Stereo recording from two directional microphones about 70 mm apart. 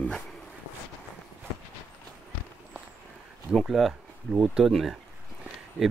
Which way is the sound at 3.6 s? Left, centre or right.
Centre.